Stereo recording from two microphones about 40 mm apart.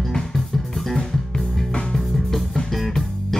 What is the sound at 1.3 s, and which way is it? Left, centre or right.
Music, left.